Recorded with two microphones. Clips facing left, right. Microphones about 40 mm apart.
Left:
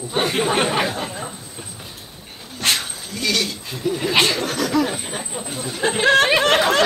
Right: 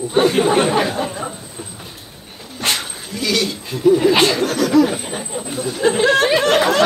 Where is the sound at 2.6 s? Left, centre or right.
Centre.